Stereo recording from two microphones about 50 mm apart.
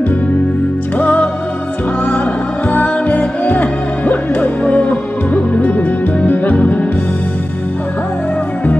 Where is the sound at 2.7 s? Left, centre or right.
Left.